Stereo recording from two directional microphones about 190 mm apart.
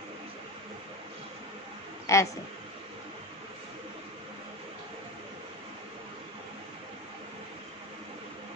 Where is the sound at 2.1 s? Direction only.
15° left (ahead or behind).